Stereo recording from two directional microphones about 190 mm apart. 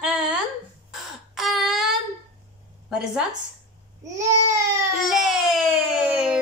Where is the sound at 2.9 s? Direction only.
5° right (ahead or behind).